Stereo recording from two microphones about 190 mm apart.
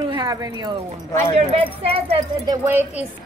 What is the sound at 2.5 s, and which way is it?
Speech, 10° right (ahead or behind).